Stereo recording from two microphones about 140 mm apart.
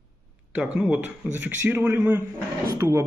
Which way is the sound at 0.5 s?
5° right (ahead or behind).